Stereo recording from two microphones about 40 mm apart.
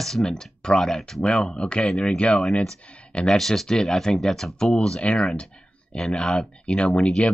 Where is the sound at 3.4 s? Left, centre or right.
Centre.